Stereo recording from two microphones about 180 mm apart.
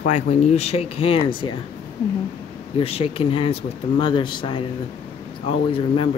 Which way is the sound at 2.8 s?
30° left (ahead or behind).